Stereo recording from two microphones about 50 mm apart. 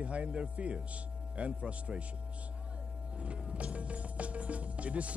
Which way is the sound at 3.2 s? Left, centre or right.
Right.